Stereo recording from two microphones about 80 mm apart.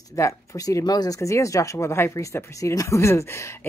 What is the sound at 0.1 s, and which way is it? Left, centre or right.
Speech, left.